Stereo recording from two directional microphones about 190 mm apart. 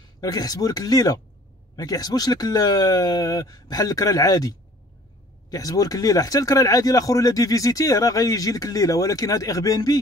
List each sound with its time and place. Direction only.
0.2 s speech: 20° left (ahead or behind)